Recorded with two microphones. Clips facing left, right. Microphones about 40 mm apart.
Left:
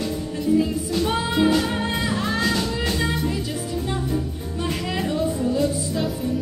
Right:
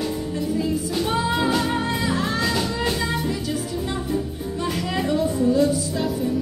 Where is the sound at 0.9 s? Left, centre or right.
Centre.